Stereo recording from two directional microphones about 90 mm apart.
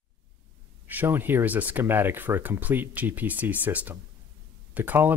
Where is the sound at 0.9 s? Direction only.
20° right (ahead or behind).